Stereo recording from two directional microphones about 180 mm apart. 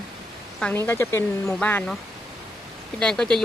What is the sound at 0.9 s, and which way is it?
Speech, 15° left (ahead or behind).